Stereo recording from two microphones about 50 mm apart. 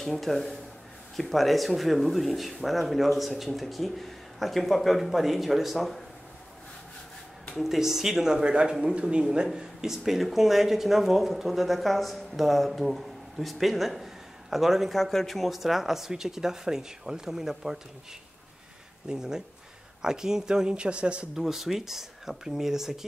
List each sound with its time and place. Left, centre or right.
0.0 s speech: centre
7.5 s speech: centre
19.0 s speech: centre
21.4 s speech: centre